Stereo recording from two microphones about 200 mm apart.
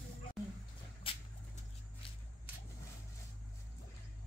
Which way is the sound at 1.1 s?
25° left (ahead or behind).